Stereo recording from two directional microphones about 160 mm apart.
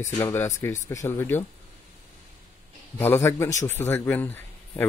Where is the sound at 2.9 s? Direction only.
15° left (ahead or behind).